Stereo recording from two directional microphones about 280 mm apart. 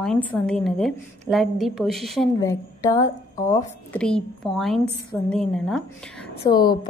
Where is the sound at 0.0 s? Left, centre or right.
Centre.